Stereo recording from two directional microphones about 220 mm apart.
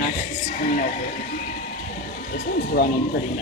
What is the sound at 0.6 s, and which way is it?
Speech, 35° left (ahead or behind).